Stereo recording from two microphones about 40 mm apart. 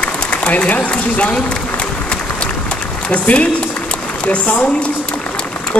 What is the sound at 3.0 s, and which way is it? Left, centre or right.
A woman's voice, left.